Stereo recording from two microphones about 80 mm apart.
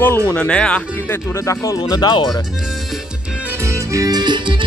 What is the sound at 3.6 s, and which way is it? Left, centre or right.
Music, right.